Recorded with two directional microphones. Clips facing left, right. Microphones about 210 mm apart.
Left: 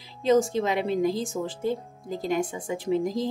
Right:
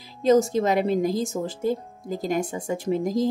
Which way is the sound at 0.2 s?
40° right (ahead or behind).